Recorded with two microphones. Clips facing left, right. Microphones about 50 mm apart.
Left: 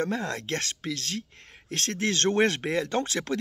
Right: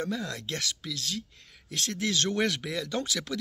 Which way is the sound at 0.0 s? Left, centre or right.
Left.